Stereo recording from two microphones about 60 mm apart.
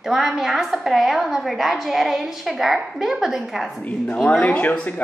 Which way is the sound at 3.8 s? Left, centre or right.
Left.